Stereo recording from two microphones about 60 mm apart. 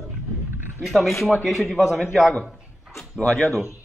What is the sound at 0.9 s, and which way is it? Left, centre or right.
Speech, centre.